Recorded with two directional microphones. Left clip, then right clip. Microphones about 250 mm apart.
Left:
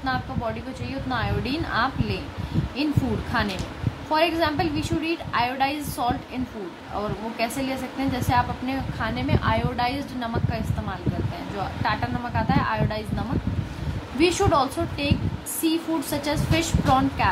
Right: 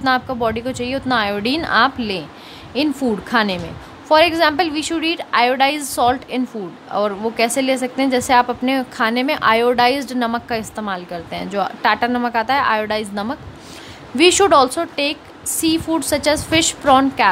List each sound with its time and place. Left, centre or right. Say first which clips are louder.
0.0 s a woman's voice: right 10 dB; right
3.3 s a woman's voice: right 8 dB; right